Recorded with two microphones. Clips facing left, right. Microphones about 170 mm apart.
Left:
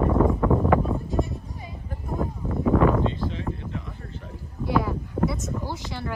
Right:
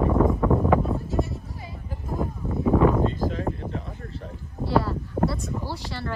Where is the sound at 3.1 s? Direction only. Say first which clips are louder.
Right 3 dB; 40° right (ahead or behind).